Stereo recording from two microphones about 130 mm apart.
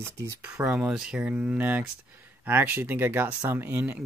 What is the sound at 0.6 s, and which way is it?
Speech, 5° right (ahead or behind).